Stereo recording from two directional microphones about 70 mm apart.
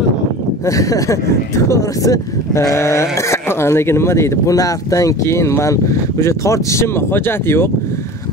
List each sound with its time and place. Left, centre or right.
0.7 s speech: left
4.6 s speech: left